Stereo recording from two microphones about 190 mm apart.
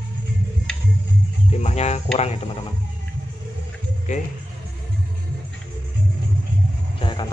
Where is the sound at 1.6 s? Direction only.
35° left (ahead or behind).